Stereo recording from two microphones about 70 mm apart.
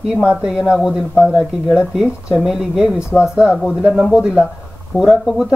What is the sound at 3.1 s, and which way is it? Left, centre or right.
Speech, left.